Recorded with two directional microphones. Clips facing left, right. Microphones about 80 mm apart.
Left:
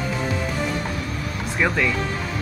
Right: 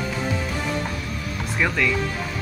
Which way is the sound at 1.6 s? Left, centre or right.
Centre.